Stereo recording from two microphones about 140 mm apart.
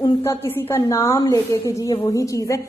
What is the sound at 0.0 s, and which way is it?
A woman's voice, 20° left (ahead or behind).